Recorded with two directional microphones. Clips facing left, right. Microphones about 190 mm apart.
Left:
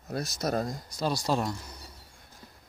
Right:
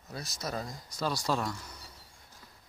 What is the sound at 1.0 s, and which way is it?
Speech, 15° left (ahead or behind).